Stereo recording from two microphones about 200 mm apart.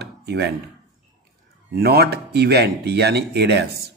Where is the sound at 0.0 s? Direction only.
55° right (ahead or behind).